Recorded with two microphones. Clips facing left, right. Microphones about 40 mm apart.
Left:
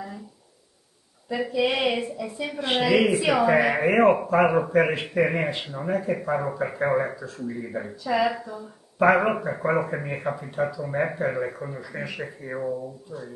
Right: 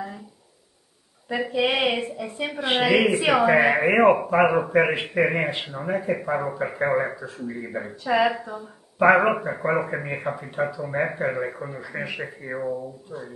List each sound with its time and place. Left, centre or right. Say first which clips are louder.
1.5 s a woman's voice: right 1 dB; right
9.0 s speech: right 2 dB; centre